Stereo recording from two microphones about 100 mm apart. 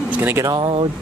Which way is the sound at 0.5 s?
65° right (ahead or behind).